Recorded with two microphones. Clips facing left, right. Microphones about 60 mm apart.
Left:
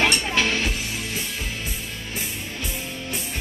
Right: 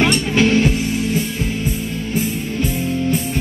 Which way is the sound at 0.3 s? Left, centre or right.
Centre.